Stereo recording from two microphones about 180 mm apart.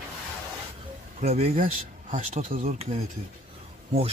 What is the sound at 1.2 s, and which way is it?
Speech, 35° right (ahead or behind).